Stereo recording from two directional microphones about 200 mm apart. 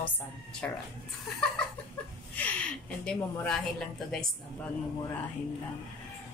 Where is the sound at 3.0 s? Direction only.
5° left (ahead or behind).